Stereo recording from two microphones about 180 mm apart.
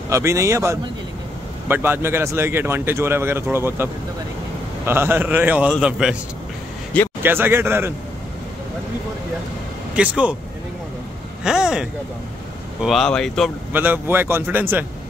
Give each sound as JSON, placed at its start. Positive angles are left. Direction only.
{"t": 0.1, "sound": "speech", "side_deg": -15}
{"t": 6.9, "sound": "speech", "side_deg": 5}
{"t": 7.2, "sound": "speech", "side_deg": -10}
{"t": 9.9, "sound": "speech", "side_deg": -5}
{"t": 11.4, "sound": "speech", "side_deg": -5}
{"t": 13.7, "sound": "speech", "side_deg": -10}